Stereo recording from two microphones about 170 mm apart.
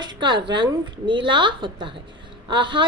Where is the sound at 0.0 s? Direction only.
25° right (ahead or behind).